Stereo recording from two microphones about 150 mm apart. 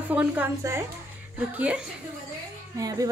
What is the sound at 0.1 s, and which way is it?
Speech, 10° right (ahead or behind).